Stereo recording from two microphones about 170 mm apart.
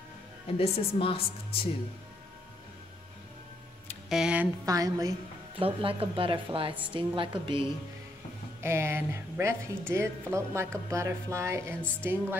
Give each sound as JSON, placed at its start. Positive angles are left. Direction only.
{"t": 0.5, "sound": "a woman's voice", "side_deg": 35}
{"t": 4.1, "sound": "a sound", "side_deg": -5}
{"t": 4.6, "sound": "a woman's voice", "side_deg": -20}
{"t": 5.6, "sound": "a woman's voice", "side_deg": -30}
{"t": 8.5, "sound": "a woman's voice", "side_deg": -15}